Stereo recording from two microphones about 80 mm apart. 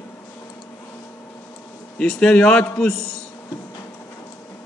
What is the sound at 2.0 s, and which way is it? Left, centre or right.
Speech, centre.